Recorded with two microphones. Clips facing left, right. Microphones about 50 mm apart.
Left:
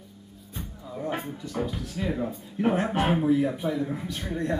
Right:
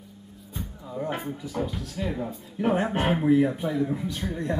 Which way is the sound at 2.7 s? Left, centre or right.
Centre.